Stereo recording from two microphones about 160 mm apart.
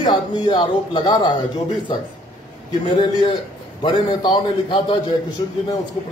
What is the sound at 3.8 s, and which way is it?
Speech, 30° left (ahead or behind).